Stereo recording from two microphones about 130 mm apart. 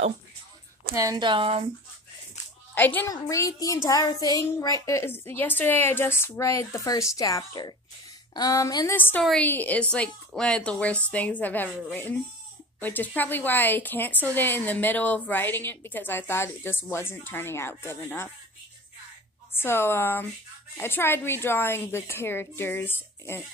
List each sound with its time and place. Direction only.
0.9 s a woman's voice: 25° right (ahead or behind)
1.2 s speech: 40° right (ahead or behind)
2.7 s a woman's voice: 15° left (ahead or behind)
3.1 s a child's voice: 25° left (ahead or behind)
8.9 s a woman's voice: 15° left (ahead or behind)
9.2 s a woman's voice: 5° left (ahead or behind)
19.5 s a woman's voice: 20° left (ahead or behind)